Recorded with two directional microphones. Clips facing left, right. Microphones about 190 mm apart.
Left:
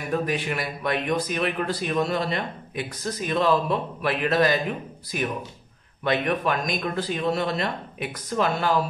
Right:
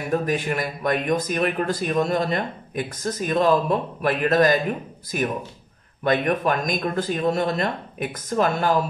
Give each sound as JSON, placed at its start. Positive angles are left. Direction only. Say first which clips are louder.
{"t": 0.3, "sound": "speech", "louder": "right 3 dB", "side_deg": -45}